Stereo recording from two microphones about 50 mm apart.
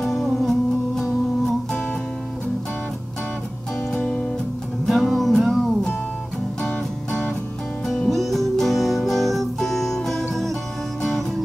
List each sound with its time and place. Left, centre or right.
0.0 s music: centre
3.9 s music: centre
4.8 s music: centre
6.6 s music: centre
7.8 s music: centre